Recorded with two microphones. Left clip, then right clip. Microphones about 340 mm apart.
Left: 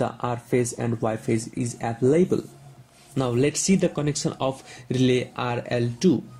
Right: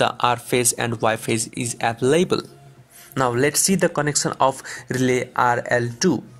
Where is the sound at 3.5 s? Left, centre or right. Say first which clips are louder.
Right 4 dB; right.